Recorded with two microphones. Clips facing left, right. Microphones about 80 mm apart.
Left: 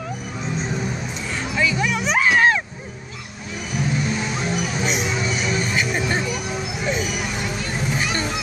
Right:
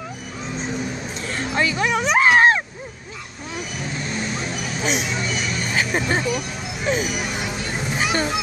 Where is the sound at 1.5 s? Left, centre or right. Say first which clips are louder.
Right 1 dB; right.